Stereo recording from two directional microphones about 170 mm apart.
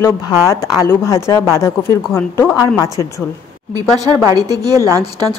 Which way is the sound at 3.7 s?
20° right (ahead or behind).